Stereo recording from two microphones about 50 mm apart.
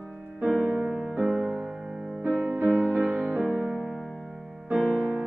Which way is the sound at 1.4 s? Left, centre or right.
Centre.